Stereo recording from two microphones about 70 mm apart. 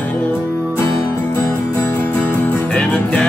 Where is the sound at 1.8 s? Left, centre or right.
Left.